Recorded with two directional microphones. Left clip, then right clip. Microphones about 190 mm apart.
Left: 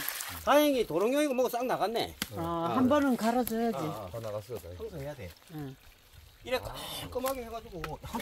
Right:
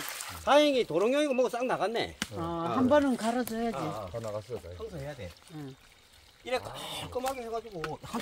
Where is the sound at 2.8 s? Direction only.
45° left (ahead or behind).